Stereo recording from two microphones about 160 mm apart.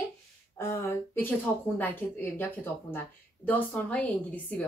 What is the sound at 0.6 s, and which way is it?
Speech, 15° left (ahead or behind).